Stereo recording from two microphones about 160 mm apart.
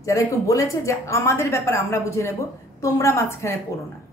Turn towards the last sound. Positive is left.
turn(degrees=15)  # may be behind; listen again after turning